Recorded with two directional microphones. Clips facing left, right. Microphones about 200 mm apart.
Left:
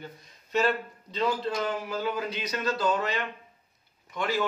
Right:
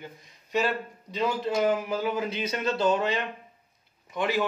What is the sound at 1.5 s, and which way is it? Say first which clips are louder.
Speech: right 5 dB; 20° right (ahead or behind).